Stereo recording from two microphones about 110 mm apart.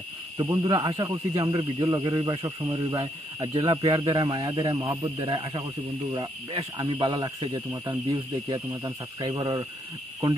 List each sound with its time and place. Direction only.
0.4 s speech: 35° right (ahead or behind)
1.3 s speech: 45° right (ahead or behind)
1.9 s speech: 35° right (ahead or behind)